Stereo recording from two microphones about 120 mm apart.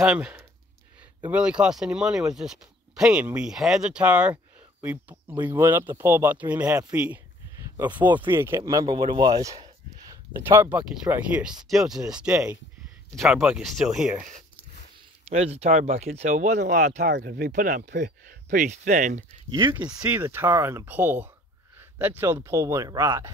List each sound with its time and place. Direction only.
0.0 s speech: 10° right (ahead or behind); by 9.6 s 30° right (ahead or behind)
10.3 s speech: 20° right (ahead or behind)
15.2 s speech: 60° right (ahead or behind); by 19.2 s 90° right
20.0 s speech: 15° right (ahead or behind)